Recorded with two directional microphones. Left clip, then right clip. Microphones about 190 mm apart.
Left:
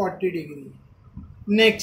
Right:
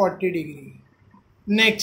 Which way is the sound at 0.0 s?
40° right (ahead or behind).